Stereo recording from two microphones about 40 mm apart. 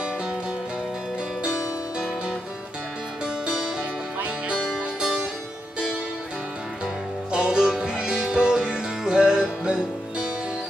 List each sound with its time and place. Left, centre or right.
1.4 s music: centre
3.4 s music: centre
7.2 s music: right